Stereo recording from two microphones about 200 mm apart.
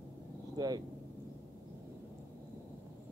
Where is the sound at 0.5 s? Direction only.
20° right (ahead or behind).